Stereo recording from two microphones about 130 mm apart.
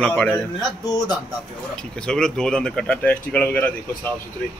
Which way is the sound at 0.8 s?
30° left (ahead or behind).